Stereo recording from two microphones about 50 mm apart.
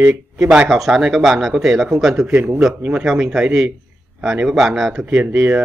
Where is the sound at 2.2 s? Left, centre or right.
Right.